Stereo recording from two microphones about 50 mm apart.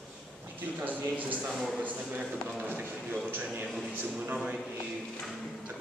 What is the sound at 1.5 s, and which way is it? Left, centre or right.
Speech, centre.